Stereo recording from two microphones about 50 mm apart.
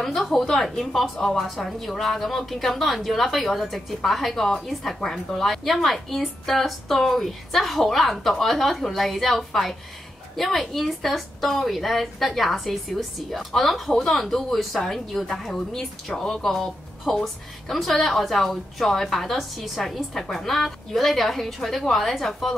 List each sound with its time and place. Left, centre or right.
0.4 s a woman's voice: centre